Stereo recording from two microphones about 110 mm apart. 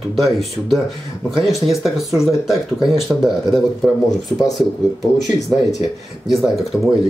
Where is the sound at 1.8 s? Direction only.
Centre (ahead or behind).